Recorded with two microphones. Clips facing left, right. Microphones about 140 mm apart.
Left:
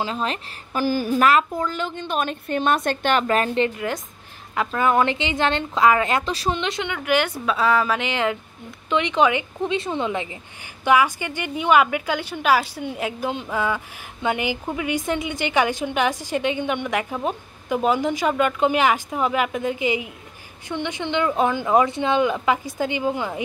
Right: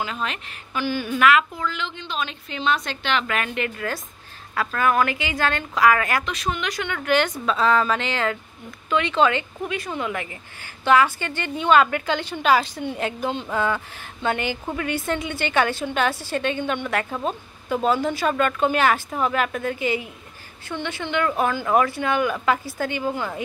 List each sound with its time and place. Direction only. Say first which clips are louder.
0.0 s a woman's voice: left 3 dB; 30° left (ahead or behind)
3.7 s speech: left 2 dB; 20° left (ahead or behind)
7.0 s a woman's voice: right 1 dB; 10° left (ahead or behind)